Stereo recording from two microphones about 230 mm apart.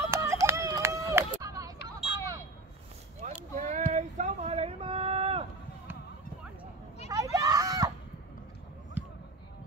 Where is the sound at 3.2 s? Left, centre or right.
Right.